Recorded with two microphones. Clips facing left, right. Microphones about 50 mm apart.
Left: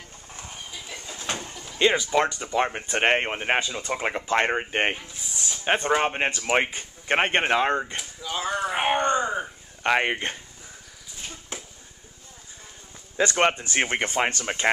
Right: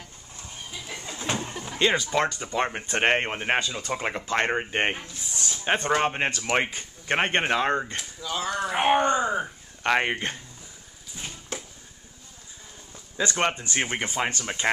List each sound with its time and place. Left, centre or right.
1.0 s vehicle: centre
1.8 s speech: centre
5.4 s a sound: centre
5.9 s speech: centre
8.9 s wail: centre
13.4 s speech: left
13.9 s speech: left
14.4 s speech: left